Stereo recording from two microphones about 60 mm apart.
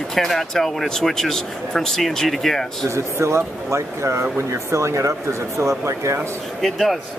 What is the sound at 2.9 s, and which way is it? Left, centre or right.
Speech, right.